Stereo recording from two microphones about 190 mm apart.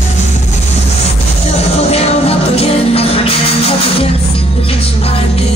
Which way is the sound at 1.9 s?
30° left (ahead or behind).